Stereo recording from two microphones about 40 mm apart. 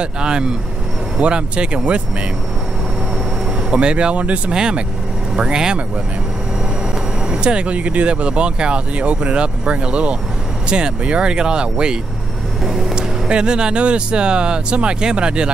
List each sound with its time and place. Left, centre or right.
0.0 s speech: right
3.7 s speech: right
4.5 s speech: right
7.2 s speech: right